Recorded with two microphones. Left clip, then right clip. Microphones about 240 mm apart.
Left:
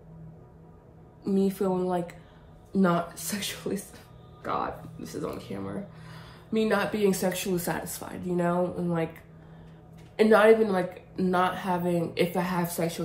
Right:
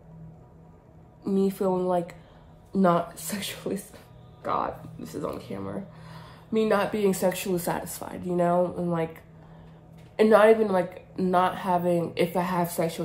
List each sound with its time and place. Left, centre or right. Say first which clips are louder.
1.2 s speech: right 2 dB; right
4.4 s speech: right 2 dB; right
10.3 s speech: right 1 dB; right